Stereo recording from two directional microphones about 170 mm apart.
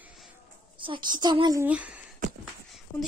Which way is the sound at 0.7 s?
30° right (ahead or behind).